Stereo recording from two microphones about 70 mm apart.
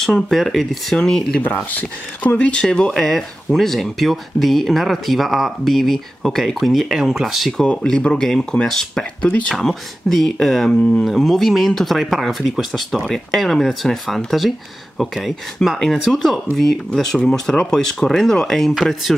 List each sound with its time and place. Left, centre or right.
0.0 s speech: centre
1.4 s speech: left; by 7.6 s centre
7.6 s speech: centre